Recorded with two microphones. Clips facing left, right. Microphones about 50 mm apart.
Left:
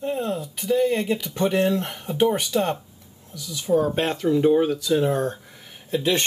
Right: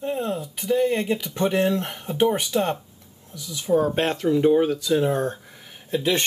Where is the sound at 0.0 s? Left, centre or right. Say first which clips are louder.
Even; centre.